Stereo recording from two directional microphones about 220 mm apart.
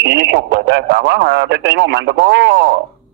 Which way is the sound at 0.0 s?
50° right (ahead or behind).